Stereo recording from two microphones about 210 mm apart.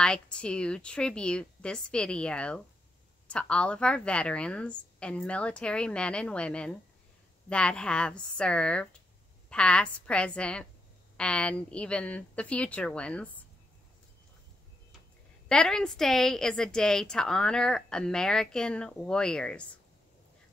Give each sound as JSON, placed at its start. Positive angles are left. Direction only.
{"t": 0.0, "sound": "a woman's voice", "side_deg": 5}
{"t": 15.4, "sound": "a woman's voice", "side_deg": 5}